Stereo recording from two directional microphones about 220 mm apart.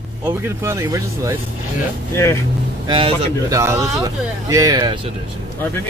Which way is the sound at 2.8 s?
20° right (ahead or behind).